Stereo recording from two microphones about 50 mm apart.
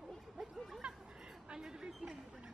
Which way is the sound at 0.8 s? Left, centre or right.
Centre.